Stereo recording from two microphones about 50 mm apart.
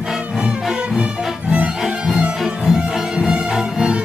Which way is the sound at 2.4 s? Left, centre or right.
Centre.